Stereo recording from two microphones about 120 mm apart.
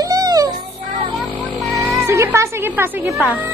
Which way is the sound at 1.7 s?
25° right (ahead or behind).